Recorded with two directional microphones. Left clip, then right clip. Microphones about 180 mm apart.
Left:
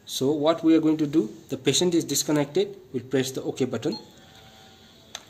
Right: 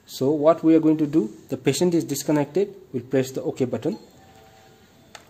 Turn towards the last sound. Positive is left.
turn(degrees=-40)  # may be behind; listen again after turning